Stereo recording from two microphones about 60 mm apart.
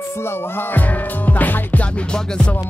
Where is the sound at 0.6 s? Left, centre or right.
Left.